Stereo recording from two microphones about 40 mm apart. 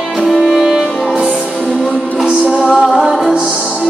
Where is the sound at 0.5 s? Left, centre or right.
Centre.